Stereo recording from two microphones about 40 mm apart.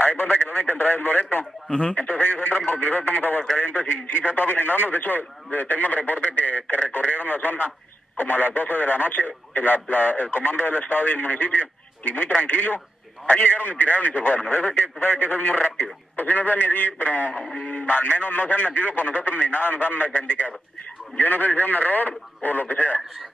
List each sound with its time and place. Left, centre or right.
0.0 s a man's voice: left
1.7 s speech: left
2.0 s a man's voice: left